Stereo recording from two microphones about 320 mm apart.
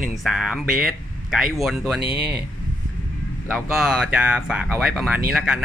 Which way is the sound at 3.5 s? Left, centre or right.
Centre.